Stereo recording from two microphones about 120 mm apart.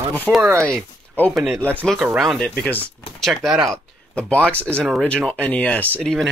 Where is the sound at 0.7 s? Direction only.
10° left (ahead or behind).